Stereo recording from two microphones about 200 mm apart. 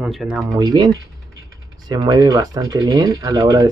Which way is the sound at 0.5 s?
20° right (ahead or behind).